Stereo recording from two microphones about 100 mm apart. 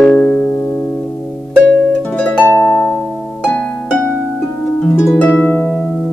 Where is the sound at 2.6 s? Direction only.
15° left (ahead or behind).